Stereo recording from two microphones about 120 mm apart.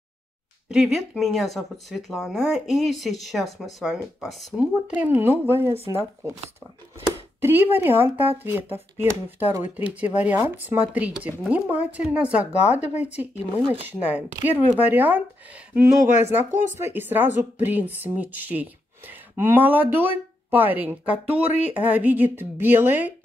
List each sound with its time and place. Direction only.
0.7 s speech: centre (ahead or behind); by 6.3 s 25° right (ahead or behind)
7.3 s speech: 20° right (ahead or behind)
12.5 s speech: 65° left (ahead or behind)
13.0 s speech: 15° right (ahead or behind)